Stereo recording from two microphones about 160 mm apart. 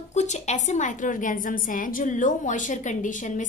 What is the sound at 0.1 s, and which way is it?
A woman's voice, 45° left (ahead or behind).